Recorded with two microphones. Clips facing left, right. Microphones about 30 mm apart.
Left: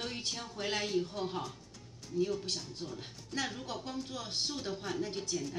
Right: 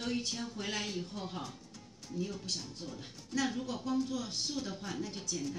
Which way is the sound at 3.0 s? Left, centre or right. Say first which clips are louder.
Right 4 dB; left.